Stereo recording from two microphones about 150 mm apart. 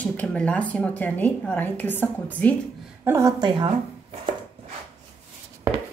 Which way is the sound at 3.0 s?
20° right (ahead or behind).